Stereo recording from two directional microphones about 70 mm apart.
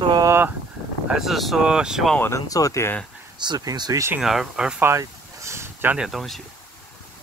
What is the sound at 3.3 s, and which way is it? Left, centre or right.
Speech, right.